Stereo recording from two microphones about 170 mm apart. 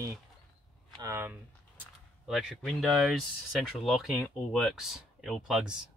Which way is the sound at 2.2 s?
Centre (ahead or behind).